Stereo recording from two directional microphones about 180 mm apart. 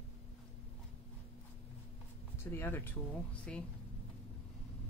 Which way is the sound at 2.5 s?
10° left (ahead or behind).